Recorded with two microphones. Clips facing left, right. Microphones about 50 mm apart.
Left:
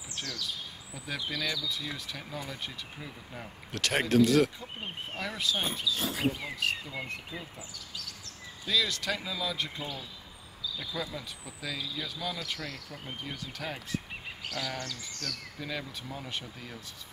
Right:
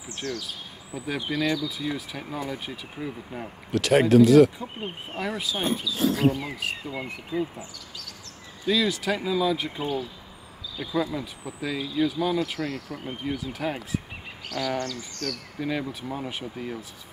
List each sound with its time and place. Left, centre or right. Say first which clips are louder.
0.2 s speech: right 12 dB; right
0.9 s speech: right 8 dB; centre
1.2 s speech: right 8 dB; right
1.7 s speech: right 6 dB; centre
5.5 s speech: right 2 dB; centre
8.6 s speech: right 6 dB; centre; by 12.8 s right
13.2 s speech: right 10 dB; centre
14.8 s speech: right 8 dB; centre
15.6 s speech: right 9 dB; centre